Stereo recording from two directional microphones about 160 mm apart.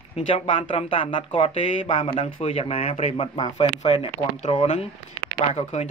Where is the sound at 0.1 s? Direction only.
35° left (ahead or behind).